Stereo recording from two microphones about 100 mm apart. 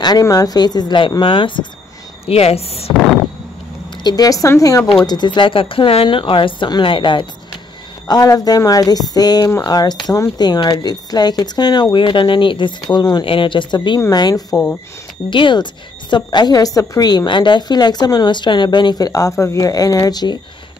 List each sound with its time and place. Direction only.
0.0 s a woman's voice: 40° left (ahead or behind); by 1.7 s 60° left (ahead or behind)
2.2 s a woman's voice: 90° left
2.9 s a sound: centre (ahead or behind)
4.0 s speech: 40° left (ahead or behind)
5.0 s speech: 45° left (ahead or behind)
8.1 s a woman's voice: 40° left (ahead or behind)
12.9 s speech: 40° left (ahead or behind)
13.2 s a woman's voice: 60° left (ahead or behind); by 14.6 s 40° left (ahead or behind)
15.2 s a woman's voice: 55° left (ahead or behind)